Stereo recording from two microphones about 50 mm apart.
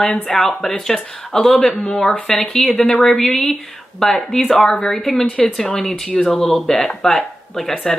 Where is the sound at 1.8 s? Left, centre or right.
Left.